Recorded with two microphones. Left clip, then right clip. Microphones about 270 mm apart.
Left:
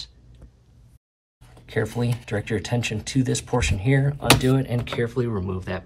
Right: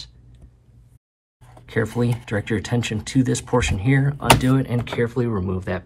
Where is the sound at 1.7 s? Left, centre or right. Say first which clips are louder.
Right 3 dB; centre.